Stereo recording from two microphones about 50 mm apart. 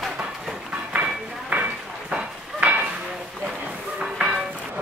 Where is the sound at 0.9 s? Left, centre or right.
Right.